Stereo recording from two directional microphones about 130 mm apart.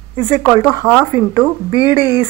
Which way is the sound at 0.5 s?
30° left (ahead or behind).